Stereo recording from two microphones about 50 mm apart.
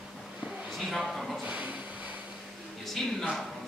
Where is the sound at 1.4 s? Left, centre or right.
Right.